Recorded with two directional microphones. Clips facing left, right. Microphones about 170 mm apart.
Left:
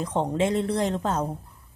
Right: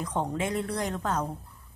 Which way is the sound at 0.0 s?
25° left (ahead or behind).